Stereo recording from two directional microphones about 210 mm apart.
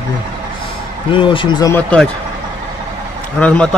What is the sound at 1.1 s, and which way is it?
Speech, 25° left (ahead or behind).